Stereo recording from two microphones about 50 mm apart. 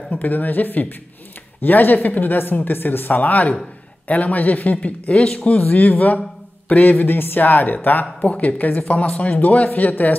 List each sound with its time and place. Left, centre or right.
0.1 s speech: left
3.2 s speech: left